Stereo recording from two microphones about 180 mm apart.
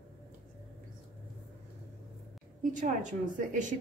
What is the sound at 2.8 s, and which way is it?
Speech, 45° right (ahead or behind).